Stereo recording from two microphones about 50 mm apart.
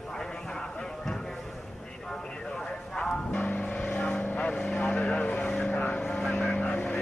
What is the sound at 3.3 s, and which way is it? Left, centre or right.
Vehicle, left.